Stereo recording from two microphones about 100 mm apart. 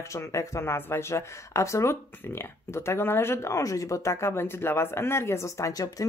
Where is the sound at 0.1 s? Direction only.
30° left (ahead or behind).